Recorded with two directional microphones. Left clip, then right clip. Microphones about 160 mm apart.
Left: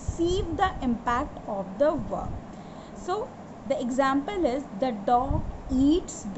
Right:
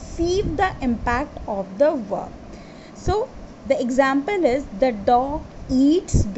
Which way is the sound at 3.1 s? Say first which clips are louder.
Right 7 dB; 40° right (ahead or behind).